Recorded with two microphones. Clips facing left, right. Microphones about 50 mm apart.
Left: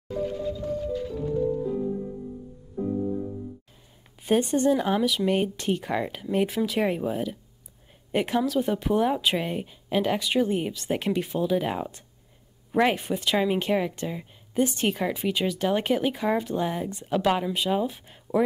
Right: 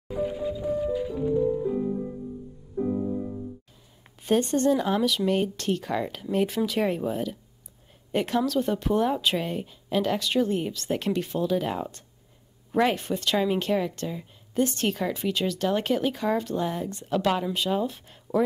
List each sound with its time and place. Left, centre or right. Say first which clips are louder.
0.1 s music: right 1 dB; centre
4.2 s speech: even; centre